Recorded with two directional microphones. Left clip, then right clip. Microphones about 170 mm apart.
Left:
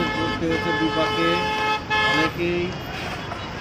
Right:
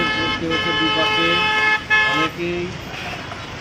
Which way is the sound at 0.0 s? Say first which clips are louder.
Right 4 dB; 30° right (ahead or behind).